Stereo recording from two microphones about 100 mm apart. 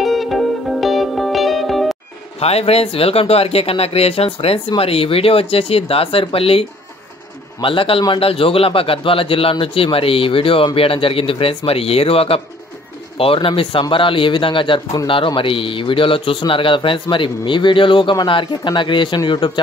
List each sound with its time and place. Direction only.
0.0 s music: centre (ahead or behind)
2.4 s a man's voice: 90° left; by 6.6 s 70° left (ahead or behind)
7.6 s a man's voice: 60° left (ahead or behind)